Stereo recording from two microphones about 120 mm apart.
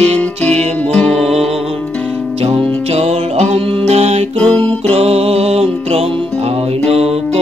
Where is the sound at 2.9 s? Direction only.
65° right (ahead or behind).